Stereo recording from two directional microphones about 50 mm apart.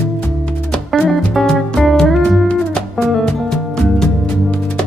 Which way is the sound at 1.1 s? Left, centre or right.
Centre.